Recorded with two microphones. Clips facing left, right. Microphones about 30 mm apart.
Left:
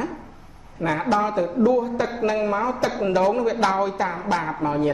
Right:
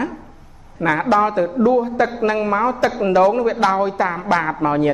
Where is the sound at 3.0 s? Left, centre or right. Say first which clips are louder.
Right 6 dB; centre.